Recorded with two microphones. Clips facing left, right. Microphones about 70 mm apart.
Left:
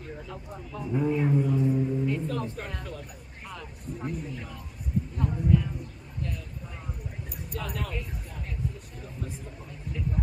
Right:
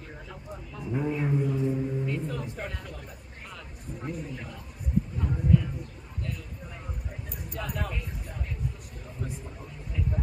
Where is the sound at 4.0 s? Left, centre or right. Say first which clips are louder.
Left 1 dB; centre.